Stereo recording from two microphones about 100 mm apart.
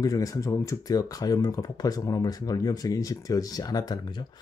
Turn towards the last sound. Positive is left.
turn(degrees=45)  # may be behind; listen again after turning